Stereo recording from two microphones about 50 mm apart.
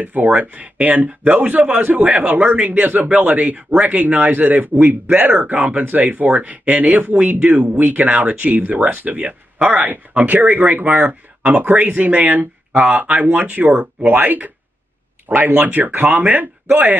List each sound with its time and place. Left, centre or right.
0.0 s speech: right